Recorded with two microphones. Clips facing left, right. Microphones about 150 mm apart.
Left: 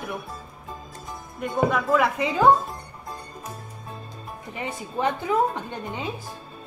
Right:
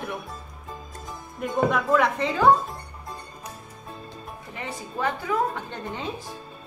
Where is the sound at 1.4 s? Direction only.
Centre (ahead or behind).